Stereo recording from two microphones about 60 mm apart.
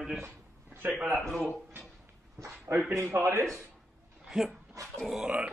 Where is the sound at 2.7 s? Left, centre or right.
Right.